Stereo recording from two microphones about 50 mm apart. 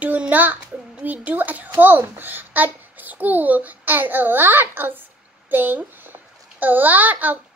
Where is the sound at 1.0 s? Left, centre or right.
Right.